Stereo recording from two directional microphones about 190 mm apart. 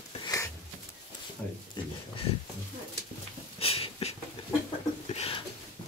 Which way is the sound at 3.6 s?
30° left (ahead or behind).